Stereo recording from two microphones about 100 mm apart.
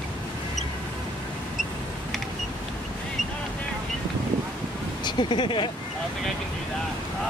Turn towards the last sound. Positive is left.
turn(degrees=50)  # may be behind; listen again after turning